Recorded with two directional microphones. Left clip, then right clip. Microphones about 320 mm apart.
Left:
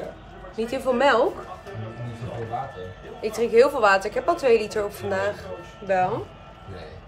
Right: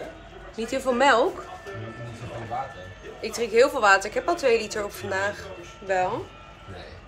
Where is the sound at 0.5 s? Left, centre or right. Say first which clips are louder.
Left 1 dB; centre.